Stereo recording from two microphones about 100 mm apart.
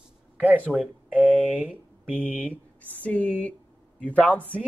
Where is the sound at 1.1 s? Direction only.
15° right (ahead or behind).